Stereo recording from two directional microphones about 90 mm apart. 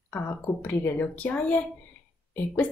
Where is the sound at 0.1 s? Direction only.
20° left (ahead or behind).